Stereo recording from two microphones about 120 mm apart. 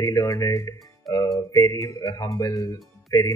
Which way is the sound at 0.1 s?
30° left (ahead or behind).